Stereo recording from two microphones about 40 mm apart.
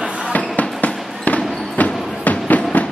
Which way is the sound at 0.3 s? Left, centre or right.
Left.